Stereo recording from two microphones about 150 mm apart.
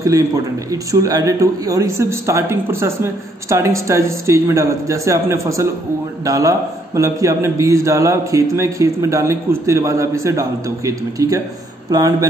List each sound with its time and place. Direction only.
0.0 s speech: 25° right (ahead or behind)